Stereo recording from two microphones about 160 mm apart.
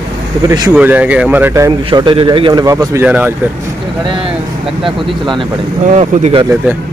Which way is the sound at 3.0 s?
10° right (ahead or behind).